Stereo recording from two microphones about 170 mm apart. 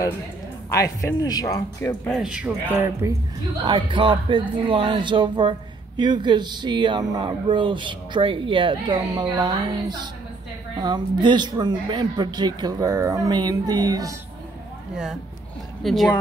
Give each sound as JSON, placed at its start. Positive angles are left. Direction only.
{"t": 0.7, "sound": "speech", "side_deg": 20}
{"t": 2.1, "sound": "speech", "side_deg": -5}
{"t": 3.6, "sound": "speech", "side_deg": -30}
{"t": 15.8, "sound": "speech", "side_deg": 0}